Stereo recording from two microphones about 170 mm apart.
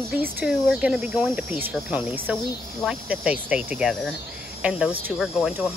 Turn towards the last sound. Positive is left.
turn(degrees=-5)  # may be behind; listen again after turning